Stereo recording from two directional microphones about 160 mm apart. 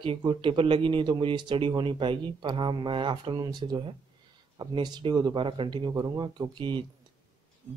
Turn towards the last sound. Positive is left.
turn(degrees=-30)  # may be behind; listen again after turning